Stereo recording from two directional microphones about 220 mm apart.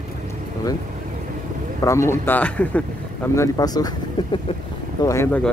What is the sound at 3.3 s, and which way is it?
Speech, 15° left (ahead or behind).